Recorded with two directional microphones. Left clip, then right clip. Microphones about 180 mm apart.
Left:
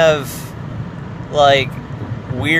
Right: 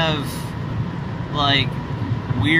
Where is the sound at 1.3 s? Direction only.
30° left (ahead or behind).